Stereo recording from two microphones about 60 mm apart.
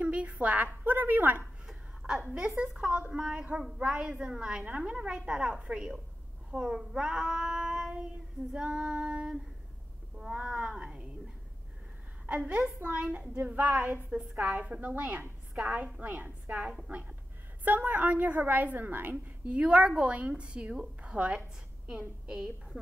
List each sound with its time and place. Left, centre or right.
0.0 s a woman's voice: right
1.7 s a sound: centre
2.2 s a woman's voice: centre
12.4 s a woman's voice: centre
17.6 s a woman's voice: right
19.4 s a woman's voice: centre